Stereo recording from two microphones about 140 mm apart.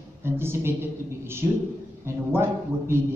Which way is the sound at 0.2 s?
15° right (ahead or behind).